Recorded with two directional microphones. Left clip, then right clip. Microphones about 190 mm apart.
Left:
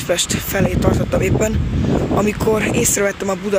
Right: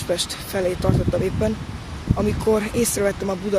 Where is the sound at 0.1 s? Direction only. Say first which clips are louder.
Left 5 dB; 5° left (ahead or behind).